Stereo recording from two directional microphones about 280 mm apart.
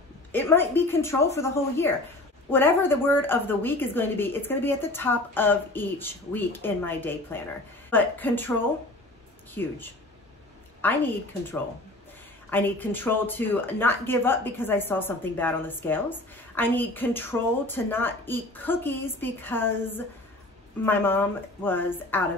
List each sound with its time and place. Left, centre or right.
0.3 s speech: centre
9.6 s speech: centre
10.8 s speech: centre
12.4 s speech: centre